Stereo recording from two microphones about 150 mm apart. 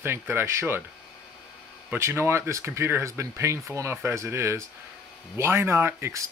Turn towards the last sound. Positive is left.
turn(degrees=-15)  # may be behind; listen again after turning